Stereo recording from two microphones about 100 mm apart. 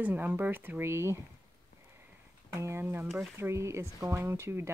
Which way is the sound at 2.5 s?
30° right (ahead or behind).